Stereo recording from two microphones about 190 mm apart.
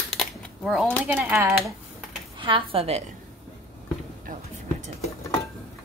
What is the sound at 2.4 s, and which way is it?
Speech, 25° right (ahead or behind).